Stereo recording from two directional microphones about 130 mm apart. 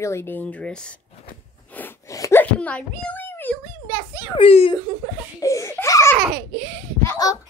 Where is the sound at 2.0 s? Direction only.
25° left (ahead or behind).